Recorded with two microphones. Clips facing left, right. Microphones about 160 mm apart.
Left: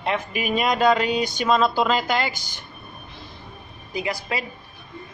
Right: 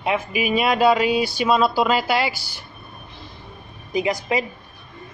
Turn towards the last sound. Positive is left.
turn(degrees=-20)  # may be behind; listen again after turning